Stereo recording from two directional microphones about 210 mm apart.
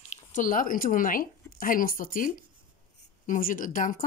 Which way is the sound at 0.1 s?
35° left (ahead or behind).